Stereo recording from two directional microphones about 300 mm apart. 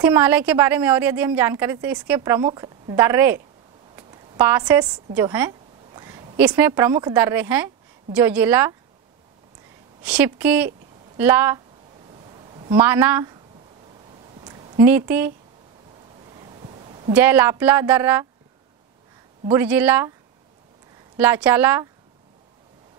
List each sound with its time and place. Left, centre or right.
0.0 s a woman's voice: centre
10.0 s a woman's voice: centre
12.3 s a sound: centre
12.7 s a woman's voice: centre
14.4 s a sound: centre
16.3 s waves: centre
17.1 s a woman's voice: centre
19.4 s a woman's voice: centre
21.2 s speech: centre